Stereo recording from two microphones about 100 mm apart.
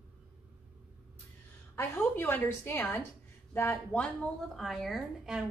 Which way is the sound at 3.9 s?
10° left (ahead or behind).